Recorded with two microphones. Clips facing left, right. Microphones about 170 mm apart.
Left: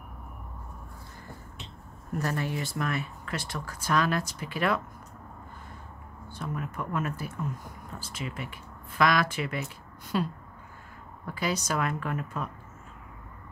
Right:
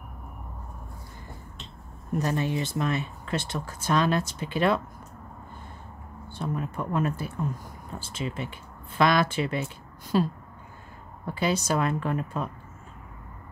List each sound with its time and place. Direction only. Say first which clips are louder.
2.1 s speech: right 4 dB; 20° right (ahead or behind)
6.2 s speech: right 4 dB; 25° right (ahead or behind)